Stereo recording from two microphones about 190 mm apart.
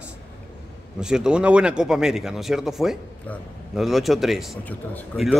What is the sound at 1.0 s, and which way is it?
A man's voice, 5° right (ahead or behind).